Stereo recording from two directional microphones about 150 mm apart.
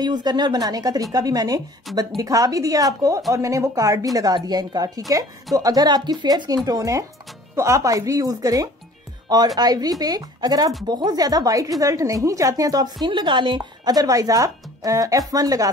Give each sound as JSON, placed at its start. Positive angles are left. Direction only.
{"t": 0.0, "sound": "a woman's voice", "side_deg": -30}